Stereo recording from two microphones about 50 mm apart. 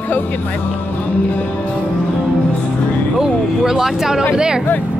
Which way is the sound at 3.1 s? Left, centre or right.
Centre.